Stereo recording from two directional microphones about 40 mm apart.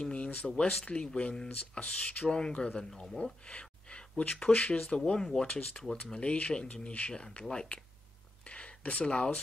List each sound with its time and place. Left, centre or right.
0.0 s speech: left
2.2 s speech: left
2.9 s speech: centre
3.4 s a sound: left
4.5 s speech: left
6.1 s speech: left
7.2 s speech: centre
8.5 s a sound: left